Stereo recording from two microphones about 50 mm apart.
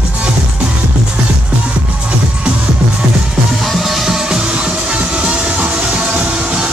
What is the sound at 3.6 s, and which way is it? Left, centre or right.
Music, centre.